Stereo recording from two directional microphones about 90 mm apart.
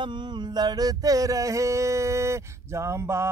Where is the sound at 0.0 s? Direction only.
55° right (ahead or behind).